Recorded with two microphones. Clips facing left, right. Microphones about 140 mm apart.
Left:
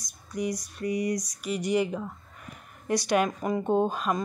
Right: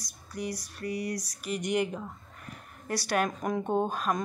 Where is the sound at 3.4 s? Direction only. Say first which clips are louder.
Left 3 dB; 5° left (ahead or behind).